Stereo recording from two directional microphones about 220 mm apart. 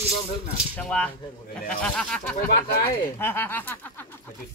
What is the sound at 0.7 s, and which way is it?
Speech, 5° left (ahead or behind).